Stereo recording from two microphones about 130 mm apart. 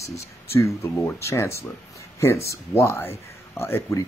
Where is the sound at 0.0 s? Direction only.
20° left (ahead or behind).